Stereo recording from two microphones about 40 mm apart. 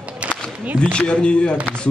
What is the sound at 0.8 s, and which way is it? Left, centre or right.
Speech, left.